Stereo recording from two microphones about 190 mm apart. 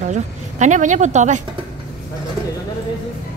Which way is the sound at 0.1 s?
40° right (ahead or behind).